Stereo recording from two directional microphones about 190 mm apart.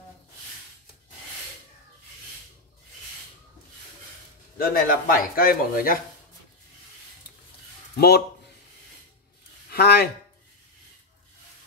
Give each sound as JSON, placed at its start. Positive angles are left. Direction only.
{"t": 4.6, "sound": "speech", "side_deg": 50}
{"t": 7.9, "sound": "speech", "side_deg": 55}
{"t": 9.7, "sound": "speech", "side_deg": 55}